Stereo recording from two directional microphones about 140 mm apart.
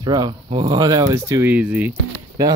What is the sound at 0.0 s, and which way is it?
Speech, 30° right (ahead or behind).